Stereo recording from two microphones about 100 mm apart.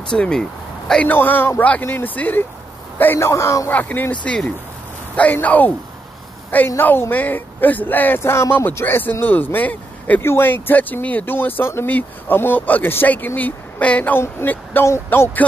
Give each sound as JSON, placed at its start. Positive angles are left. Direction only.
{"t": 0.1, "sound": "speech", "side_deg": 5}
{"t": 1.0, "sound": "speech", "side_deg": 20}
{"t": 3.7, "sound": "speech", "side_deg": 15}
{"t": 6.8, "sound": "speech", "side_deg": 20}